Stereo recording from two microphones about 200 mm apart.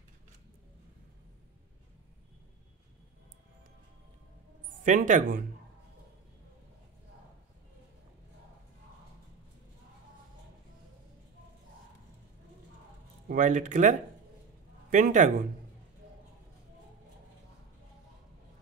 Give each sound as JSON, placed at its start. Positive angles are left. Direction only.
{"t": 4.8, "sound": "speech", "side_deg": -40}
{"t": 13.3, "sound": "speech", "side_deg": -40}